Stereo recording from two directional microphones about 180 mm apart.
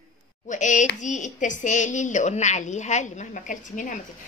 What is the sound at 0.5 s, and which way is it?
A woman's voice, 45° left (ahead or behind).